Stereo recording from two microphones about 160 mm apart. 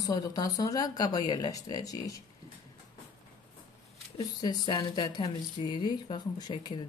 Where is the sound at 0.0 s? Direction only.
25° left (ahead or behind).